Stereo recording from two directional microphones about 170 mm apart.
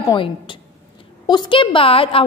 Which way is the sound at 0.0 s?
25° left (ahead or behind).